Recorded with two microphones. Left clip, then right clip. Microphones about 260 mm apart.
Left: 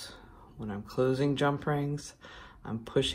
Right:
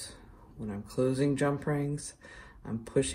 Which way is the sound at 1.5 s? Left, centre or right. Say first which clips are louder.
Left 1 dB; centre.